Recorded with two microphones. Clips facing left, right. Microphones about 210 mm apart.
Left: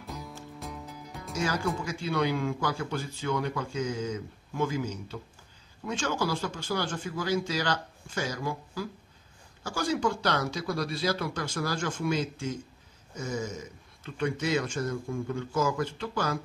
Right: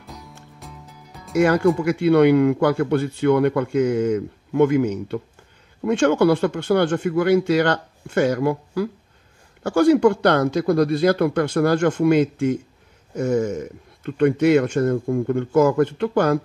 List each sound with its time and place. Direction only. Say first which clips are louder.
0.6 s music: left 2 dB; centre (ahead or behind)
1.3 s a man's voice: right 14 dB; 65° right (ahead or behind)